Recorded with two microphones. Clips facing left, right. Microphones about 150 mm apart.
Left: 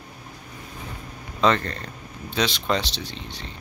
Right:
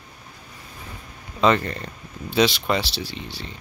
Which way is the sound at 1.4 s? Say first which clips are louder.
Right 2 dB; 5° right (ahead or behind).